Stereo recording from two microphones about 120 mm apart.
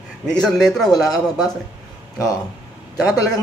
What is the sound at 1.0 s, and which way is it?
Speech, 30° left (ahead or behind).